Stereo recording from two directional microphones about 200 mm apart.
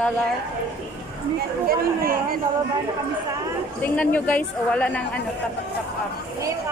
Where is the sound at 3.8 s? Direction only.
10° left (ahead or behind).